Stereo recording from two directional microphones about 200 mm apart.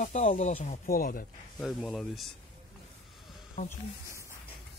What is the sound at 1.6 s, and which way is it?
Speech, centre (ahead or behind).